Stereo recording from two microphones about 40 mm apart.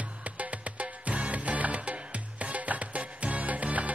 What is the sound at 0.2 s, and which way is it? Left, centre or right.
Music, right.